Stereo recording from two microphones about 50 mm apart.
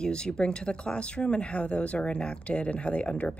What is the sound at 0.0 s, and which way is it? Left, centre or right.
Speech, centre.